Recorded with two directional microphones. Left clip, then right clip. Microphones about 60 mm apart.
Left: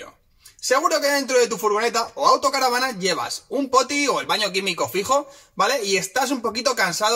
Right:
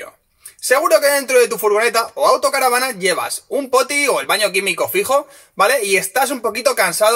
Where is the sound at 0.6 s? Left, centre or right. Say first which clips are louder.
Right 6 dB; right.